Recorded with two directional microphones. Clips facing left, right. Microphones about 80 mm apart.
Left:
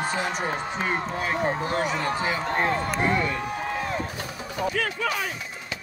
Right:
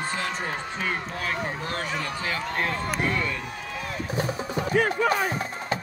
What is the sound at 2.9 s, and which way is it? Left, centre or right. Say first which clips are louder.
Chop: left 3 dB; left.